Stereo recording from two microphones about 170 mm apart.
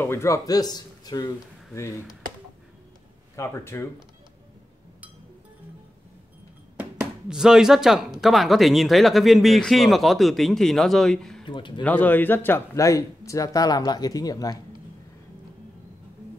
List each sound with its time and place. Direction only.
0.0 s speech: 15° left (ahead or behind)
3.3 s a man's voice: 15° left (ahead or behind)
6.8 s speech: 5° right (ahead or behind)
11.4 s speech: 30° left (ahead or behind)
11.8 s a man's voice: 10° left (ahead or behind)